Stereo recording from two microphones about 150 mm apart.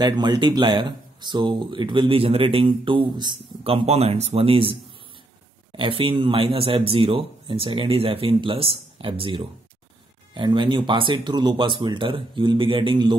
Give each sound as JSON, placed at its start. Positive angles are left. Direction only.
{"t": 0.0, "sound": "speech", "side_deg": -30}